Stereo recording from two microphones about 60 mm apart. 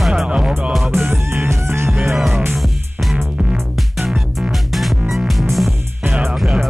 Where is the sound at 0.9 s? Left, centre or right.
Right.